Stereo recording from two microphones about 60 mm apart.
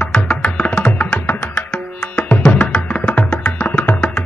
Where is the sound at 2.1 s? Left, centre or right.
Left.